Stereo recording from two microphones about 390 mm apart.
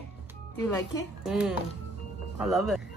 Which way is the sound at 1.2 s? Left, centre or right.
Centre.